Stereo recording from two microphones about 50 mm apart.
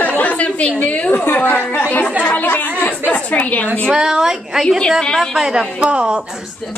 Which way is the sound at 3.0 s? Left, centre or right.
Left.